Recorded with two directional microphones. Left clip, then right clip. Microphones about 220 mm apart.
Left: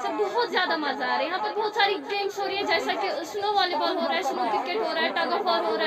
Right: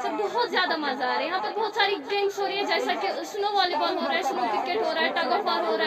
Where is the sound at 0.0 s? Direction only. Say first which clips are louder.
Left 1 dB; centre (ahead or behind).